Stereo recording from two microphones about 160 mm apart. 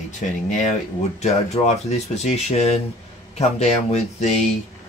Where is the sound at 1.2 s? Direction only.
45° left (ahead or behind).